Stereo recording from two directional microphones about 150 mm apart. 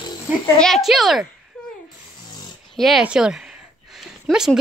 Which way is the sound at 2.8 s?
Centre (ahead or behind).